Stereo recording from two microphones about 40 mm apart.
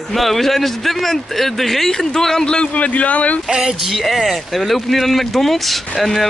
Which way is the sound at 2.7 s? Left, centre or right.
Left.